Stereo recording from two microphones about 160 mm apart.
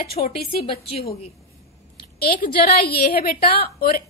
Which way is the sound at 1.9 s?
70° left (ahead or behind).